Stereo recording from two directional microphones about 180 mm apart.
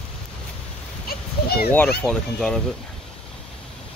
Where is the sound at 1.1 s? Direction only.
55° left (ahead or behind).